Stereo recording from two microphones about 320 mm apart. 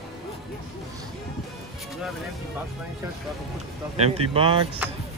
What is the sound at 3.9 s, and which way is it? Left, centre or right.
Speech, centre.